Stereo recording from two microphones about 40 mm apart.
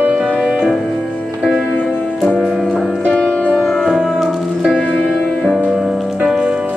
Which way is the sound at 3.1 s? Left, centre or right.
Left.